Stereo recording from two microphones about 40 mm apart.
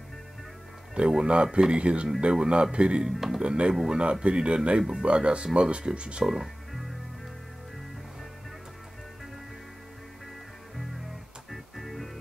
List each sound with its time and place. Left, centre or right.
0.9 s speech: right
3.1 s speech: centre
3.4 s speech: right
6.2 s music: centre
11.5 s music: centre